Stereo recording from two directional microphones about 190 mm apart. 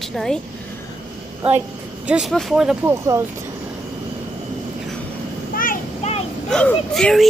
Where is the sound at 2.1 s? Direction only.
Centre (ahead or behind).